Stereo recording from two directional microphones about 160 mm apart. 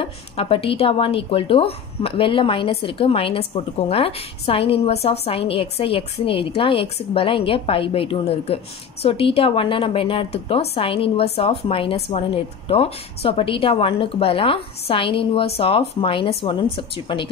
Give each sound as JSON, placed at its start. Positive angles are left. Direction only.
{"t": 0.0, "sound": "a woman's voice", "side_deg": 35}